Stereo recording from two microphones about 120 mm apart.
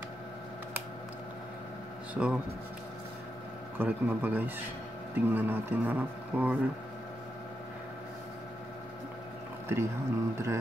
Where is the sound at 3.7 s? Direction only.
15° right (ahead or behind).